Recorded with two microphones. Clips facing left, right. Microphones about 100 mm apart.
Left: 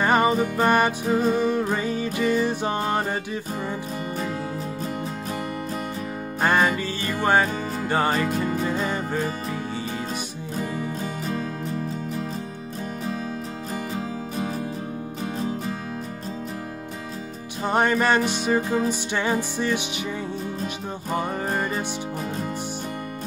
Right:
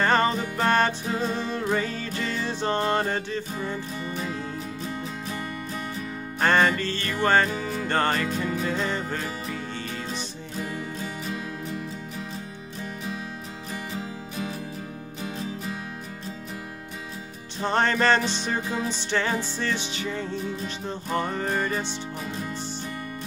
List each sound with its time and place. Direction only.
0.0 s music: 10° left (ahead or behind)
6.4 s music: 10° left (ahead or behind)
8.3 s music: 40° left (ahead or behind)
8.6 s music: 15° left (ahead or behind)
10.6 s music: 45° left (ahead or behind)
17.6 s music: 10° left (ahead or behind)